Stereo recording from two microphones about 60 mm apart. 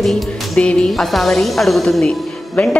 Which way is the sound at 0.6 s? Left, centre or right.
Centre.